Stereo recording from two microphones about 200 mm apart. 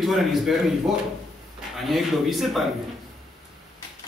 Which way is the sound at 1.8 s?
Centre (ahead or behind).